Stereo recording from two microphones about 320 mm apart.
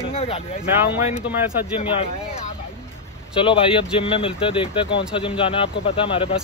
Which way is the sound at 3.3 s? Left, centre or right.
Centre.